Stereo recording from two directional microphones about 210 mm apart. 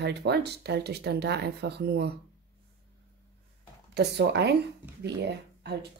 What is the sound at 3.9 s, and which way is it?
Speech, 50° right (ahead or behind).